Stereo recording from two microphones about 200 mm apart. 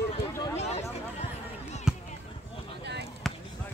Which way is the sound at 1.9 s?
5° right (ahead or behind).